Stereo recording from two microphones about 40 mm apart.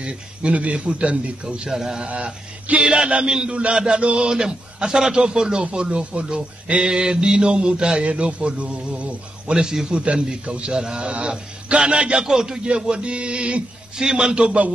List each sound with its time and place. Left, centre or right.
0.0 s a man's voice: right
1.7 s a man's voice: centre
2.0 s a man's voice: right
6.8 s a man's voice: centre
9.5 s a man's voice: centre
13.9 s a man's voice: centre